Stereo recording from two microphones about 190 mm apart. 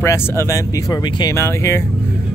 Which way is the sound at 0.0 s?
15° left (ahead or behind).